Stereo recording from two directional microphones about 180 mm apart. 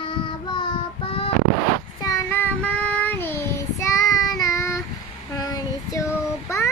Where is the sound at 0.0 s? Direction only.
30° left (ahead or behind).